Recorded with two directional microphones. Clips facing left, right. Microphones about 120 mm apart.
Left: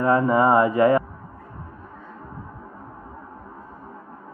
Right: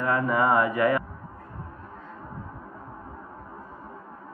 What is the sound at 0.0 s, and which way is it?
A man's voice, 30° left (ahead or behind).